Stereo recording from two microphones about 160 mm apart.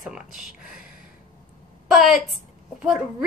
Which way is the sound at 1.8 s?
Centre (ahead or behind).